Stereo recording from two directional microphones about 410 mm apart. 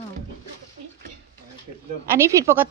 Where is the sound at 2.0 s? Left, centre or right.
Centre.